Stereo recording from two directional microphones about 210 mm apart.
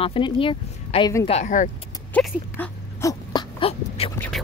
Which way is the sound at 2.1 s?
5° left (ahead or behind).